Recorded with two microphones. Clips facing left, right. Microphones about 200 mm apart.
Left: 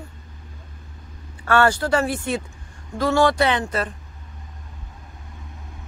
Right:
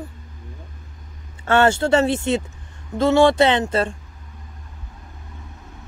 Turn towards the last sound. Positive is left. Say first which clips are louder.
# right 4 dB
turn(degrees=-30)  # may be behind; listen again after turning